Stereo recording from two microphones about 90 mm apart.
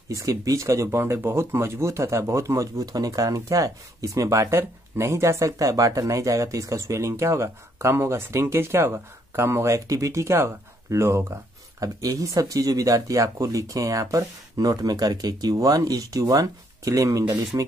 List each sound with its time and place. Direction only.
0.1 s speech: 40° right (ahead or behind)